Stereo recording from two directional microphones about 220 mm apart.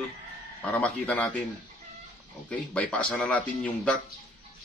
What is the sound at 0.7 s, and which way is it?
Speech, 5° left (ahead or behind).